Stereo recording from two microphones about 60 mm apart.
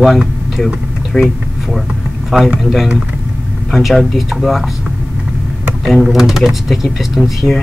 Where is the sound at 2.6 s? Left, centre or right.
Centre.